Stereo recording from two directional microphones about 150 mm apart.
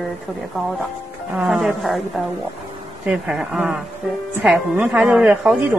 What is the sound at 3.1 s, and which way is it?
A woman's voice, 5° right (ahead or behind).